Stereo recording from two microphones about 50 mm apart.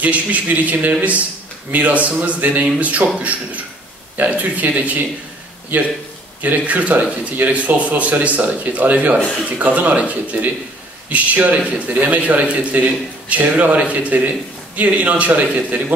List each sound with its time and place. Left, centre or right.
0.0 s speech: right
6.4 s speech: right